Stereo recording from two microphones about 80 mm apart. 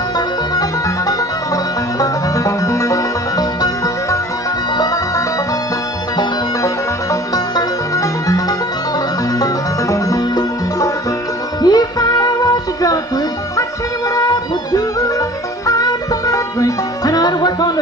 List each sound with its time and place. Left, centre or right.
0.6 s music: left
6.6 s music: left
14.1 s music: left